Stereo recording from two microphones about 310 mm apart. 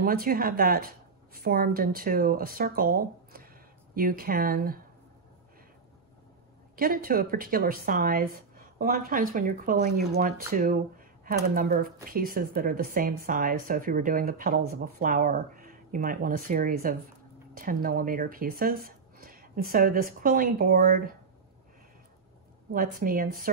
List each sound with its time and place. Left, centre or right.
0.0 s speech: right
6.8 s speech: right
22.7 s speech: right